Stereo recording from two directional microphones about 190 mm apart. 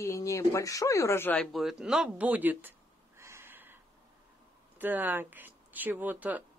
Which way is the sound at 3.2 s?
15° right (ahead or behind).